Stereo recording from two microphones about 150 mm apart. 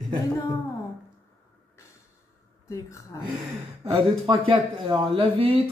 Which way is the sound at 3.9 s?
35° right (ahead or behind).